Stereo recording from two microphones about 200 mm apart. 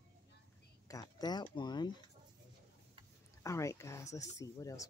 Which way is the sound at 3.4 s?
15° left (ahead or behind).